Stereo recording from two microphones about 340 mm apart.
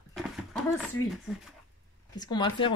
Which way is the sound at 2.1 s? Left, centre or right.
Centre.